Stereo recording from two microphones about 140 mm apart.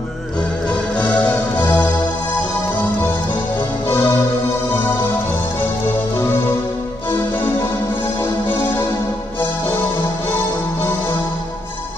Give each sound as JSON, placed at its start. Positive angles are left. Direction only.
{"t": 1.6, "sound": "music", "side_deg": 10}
{"t": 3.9, "sound": "music", "side_deg": 15}
{"t": 8.2, "sound": "music", "side_deg": 15}